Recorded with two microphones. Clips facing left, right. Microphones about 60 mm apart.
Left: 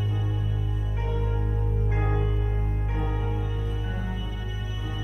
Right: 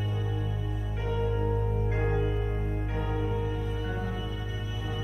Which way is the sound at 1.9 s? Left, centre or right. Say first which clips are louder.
Left 1 dB; centre.